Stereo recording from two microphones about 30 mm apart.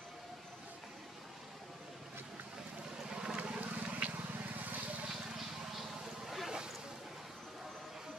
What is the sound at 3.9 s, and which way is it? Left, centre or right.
Vehicle, right.